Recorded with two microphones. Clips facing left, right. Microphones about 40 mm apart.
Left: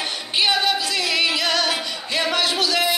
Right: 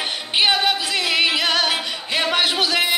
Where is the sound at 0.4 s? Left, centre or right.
Right.